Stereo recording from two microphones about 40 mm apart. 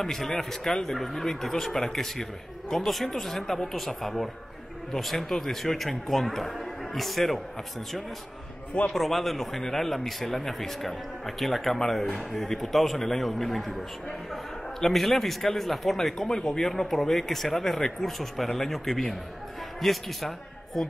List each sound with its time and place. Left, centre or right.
0.0 s a man's voice: centre
8.9 s a man's voice: centre